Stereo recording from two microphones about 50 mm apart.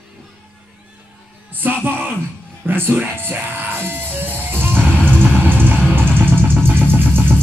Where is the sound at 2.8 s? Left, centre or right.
Right.